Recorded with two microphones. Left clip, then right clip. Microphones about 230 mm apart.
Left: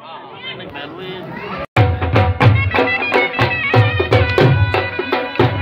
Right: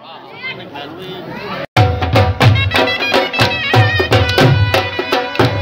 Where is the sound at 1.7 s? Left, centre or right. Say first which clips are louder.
Right 3 dB; right.